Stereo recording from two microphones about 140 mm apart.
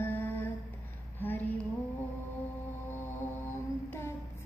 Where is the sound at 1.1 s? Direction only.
20° left (ahead or behind).